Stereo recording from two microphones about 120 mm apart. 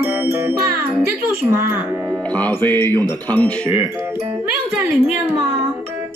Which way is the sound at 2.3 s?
15° left (ahead or behind).